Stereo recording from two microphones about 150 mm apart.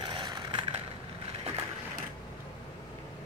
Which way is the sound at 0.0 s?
30° right (ahead or behind).